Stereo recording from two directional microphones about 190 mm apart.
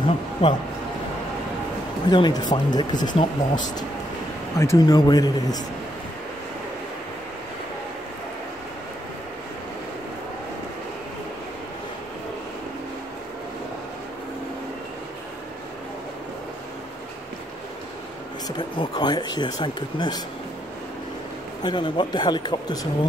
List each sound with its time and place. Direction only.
0.0 s a sound: 25° left (ahead or behind)
2.0 s speech: 20° left (ahead or behind)
4.6 s speech: 15° left (ahead or behind)
18.6 s speech: 20° left (ahead or behind)
21.6 s speech: 25° left (ahead or behind)